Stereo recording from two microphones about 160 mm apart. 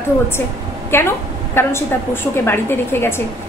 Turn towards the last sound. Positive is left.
turn(degrees=15)  # may be behind; listen again after turning